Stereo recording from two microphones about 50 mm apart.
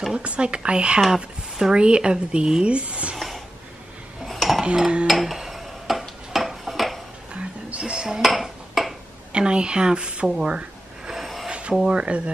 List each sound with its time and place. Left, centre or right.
0.1 s speech: right
1.0 s speech: centre
4.3 s cutlery: centre
4.6 s dishes: centre
5.0 s dishes: centre
7.8 s dishes: centre
8.2 s dishes: centre
9.3 s speech: centre
11.1 s snort: centre
11.4 s speech: centre